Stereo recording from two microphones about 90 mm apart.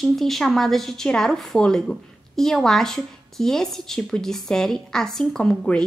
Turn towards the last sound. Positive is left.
turn(degrees=10)  # may be behind; listen again after turning